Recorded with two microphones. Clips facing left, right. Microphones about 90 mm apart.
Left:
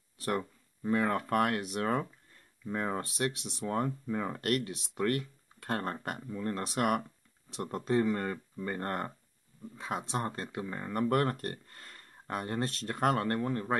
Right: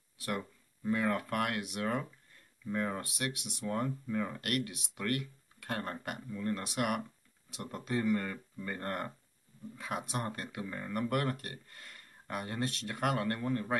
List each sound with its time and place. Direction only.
0.8 s speech: 35° left (ahead or behind)
2.6 s speech: 25° left (ahead or behind)